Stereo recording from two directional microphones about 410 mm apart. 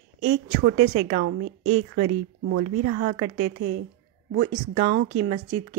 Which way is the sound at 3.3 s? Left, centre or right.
Right.